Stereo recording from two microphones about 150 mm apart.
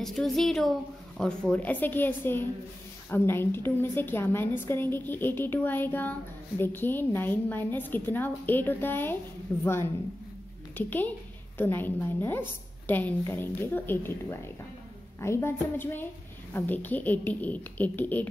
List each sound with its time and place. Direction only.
0.0 s a woman's voice: centre (ahead or behind)
10.8 s a woman's voice: 10° left (ahead or behind)